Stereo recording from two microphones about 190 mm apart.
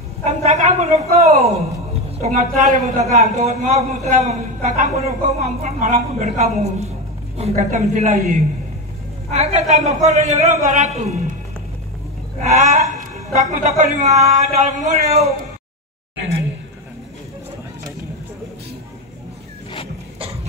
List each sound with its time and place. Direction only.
0.2 s a woman's voice: 35° right (ahead or behind)
12.4 s a sound: 40° right (ahead or behind)
13.5 s a man's voice: 40° right (ahead or behind)